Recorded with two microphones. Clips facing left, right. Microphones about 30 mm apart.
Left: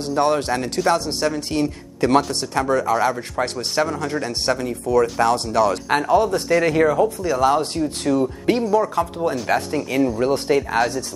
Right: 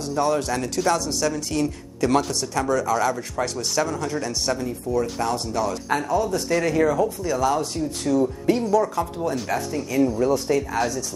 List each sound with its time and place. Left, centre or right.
0.1 s speech: left
5.2 s speech: left
5.9 s speech: left
6.6 s speech: left
9.5 s speech: left